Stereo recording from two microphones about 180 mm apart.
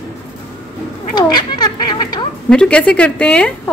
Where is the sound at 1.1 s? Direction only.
25° left (ahead or behind).